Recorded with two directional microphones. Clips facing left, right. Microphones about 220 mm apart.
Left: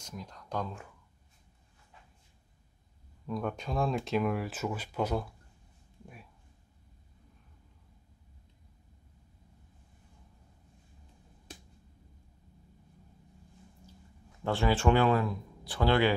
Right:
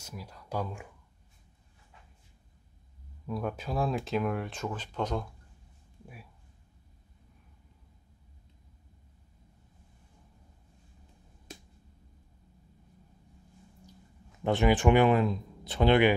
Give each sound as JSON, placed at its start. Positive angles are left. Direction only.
{"t": 0.0, "sound": "speech", "side_deg": -5}
{"t": 3.3, "sound": "speech", "side_deg": -5}
{"t": 14.4, "sound": "speech", "side_deg": -20}